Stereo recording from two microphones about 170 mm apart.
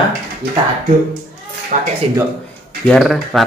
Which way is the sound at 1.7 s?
45° right (ahead or behind).